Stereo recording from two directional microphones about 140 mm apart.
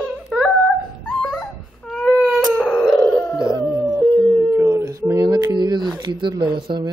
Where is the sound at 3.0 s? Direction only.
20° left (ahead or behind).